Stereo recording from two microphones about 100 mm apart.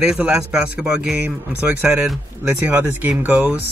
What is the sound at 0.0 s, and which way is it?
A man's voice, 10° right (ahead or behind).